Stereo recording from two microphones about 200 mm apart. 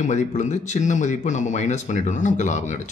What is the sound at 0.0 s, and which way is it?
Speech, 35° left (ahead or behind).